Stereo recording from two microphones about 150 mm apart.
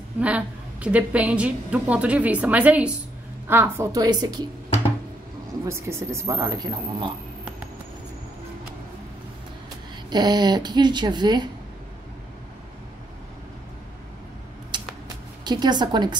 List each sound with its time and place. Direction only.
0.2 s a woman's voice: 10° right (ahead or behind); by 4.5 s 25° right (ahead or behind)
5.7 s speech: 20° right (ahead or behind)
10.0 s speech: 30° right (ahead or behind)
14.7 s a sound: 30° right (ahead or behind)
15.4 s speech: 30° right (ahead or behind)